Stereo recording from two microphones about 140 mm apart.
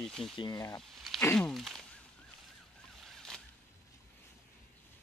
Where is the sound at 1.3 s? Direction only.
Centre (ahead or behind).